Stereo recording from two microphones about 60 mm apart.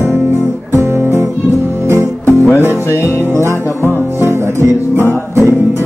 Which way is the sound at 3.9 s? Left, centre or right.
Right.